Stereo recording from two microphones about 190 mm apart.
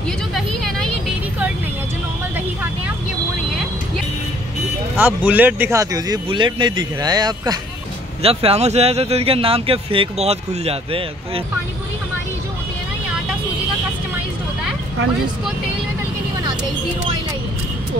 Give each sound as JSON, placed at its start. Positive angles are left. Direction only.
{"t": 0.3, "sound": "vehicle", "side_deg": 0}
{"t": 4.9, "sound": "speech", "side_deg": -10}